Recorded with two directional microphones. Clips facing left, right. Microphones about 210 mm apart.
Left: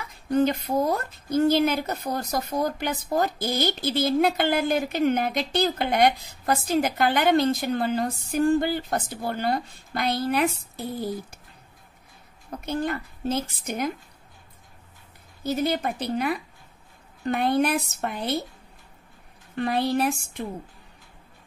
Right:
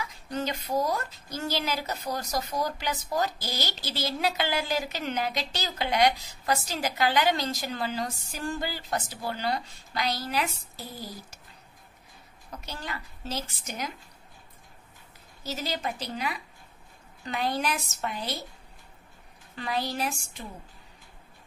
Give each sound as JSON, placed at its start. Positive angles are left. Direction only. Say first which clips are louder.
{"t": 0.0, "sound": "speech", "louder": "left 10 dB", "side_deg": 55}
{"t": 12.5, "sound": "speech", "louder": "left 11 dB", "side_deg": 55}
{"t": 15.4, "sound": "speech", "louder": "left 8 dB", "side_deg": 55}
{"t": 19.5, "sound": "speech", "louder": "left 8 dB", "side_deg": 55}